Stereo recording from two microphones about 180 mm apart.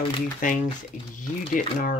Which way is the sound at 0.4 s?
45° left (ahead or behind).